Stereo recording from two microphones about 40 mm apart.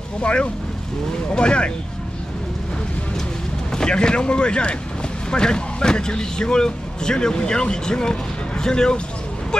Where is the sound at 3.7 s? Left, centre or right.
Centre.